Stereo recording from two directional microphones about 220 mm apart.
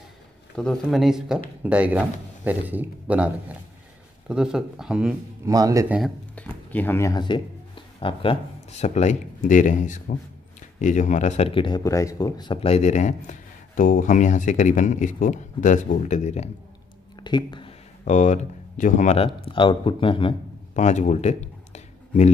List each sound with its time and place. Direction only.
0.6 s a man's voice: centre (ahead or behind)
4.3 s a man's voice: 5° right (ahead or behind)
5.5 s speech: 15° right (ahead or behind)
5.9 s speech: 5° left (ahead or behind); by 16.4 s 30° left (ahead or behind)
17.2 s speech: 20° left (ahead or behind)